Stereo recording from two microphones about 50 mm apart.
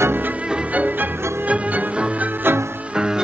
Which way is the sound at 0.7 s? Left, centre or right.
Right.